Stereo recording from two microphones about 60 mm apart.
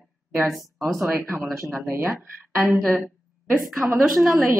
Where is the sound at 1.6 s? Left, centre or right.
Right.